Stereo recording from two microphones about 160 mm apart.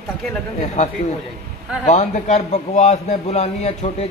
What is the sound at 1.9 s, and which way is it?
A man's voice, 50° left (ahead or behind).